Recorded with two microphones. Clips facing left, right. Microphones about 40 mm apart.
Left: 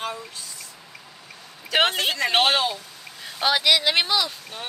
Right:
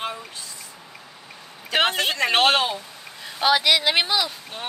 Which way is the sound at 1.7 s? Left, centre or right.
Centre.